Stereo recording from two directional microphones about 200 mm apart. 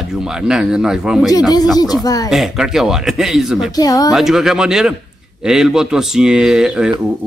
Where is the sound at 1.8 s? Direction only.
20° left (ahead or behind).